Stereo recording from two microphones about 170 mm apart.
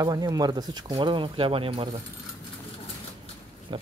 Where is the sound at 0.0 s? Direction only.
20° right (ahead or behind).